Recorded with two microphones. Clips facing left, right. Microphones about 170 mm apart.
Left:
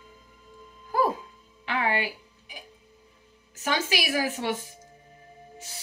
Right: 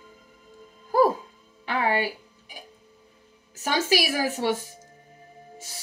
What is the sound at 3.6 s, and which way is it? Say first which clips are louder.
Speech: right 4 dB; 40° right (ahead or behind).